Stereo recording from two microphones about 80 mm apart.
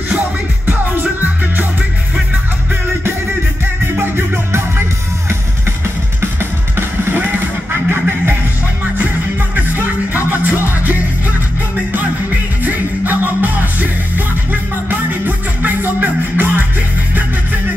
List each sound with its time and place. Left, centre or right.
0.7 s music: right
4.0 s music: right
6.8 s music: right
9.8 s music: right
12.6 s music: right